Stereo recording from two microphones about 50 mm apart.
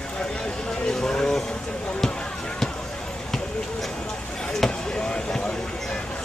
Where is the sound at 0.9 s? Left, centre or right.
Centre.